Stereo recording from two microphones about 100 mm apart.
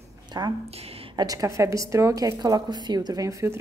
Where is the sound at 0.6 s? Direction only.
85° right.